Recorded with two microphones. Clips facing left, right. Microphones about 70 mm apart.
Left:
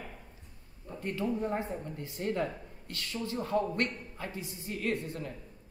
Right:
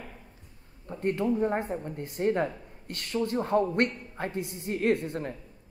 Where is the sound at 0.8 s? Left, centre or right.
Right.